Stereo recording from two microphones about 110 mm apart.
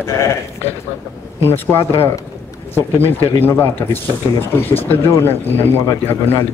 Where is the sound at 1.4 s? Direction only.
20° left (ahead or behind).